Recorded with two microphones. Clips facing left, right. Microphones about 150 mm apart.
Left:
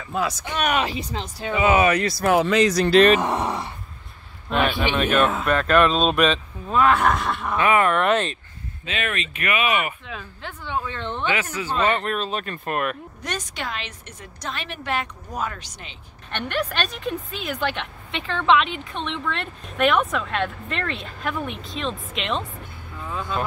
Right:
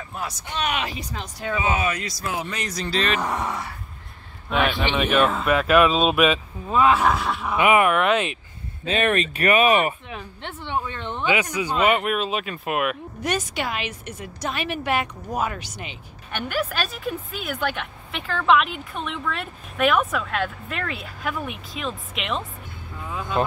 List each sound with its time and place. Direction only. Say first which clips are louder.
0.1 s speech: left 9 dB; 90° left
0.6 s speech: left 4 dB; 45° left (ahead or behind)
0.8 s speech: left 3 dB; 25° left (ahead or behind)
1.5 s speech: left 6 dB; 75° left (ahead or behind)
3.2 s speech: left 3 dB; 25° left (ahead or behind)
4.5 s speech: left 1 dB; centre (ahead or behind)
7.5 s speech: right 1 dB; 15° right (ahead or behind)
8.8 s speech: right 7 dB; 40° right (ahead or behind)
10.0 s a woman's voice: right 1 dB; 20° right (ahead or behind)
11.0 s speech: right 3 dB; 10° right (ahead or behind)
23.0 s speech: right 2 dB; 15° right (ahead or behind)